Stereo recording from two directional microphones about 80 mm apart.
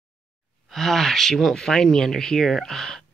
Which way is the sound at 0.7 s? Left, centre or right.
Centre.